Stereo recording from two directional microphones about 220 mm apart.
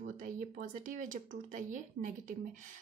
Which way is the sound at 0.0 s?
35° right (ahead or behind).